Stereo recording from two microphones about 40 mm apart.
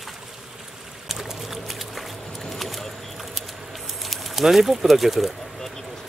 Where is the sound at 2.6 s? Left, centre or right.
Centre.